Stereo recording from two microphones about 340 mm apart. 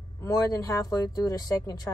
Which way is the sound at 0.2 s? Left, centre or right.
Centre.